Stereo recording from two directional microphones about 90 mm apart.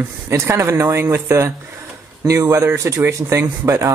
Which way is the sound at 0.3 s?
30° right (ahead or behind).